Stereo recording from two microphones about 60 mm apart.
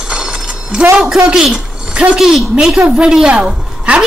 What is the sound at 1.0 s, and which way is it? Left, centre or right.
A man's voice, centre.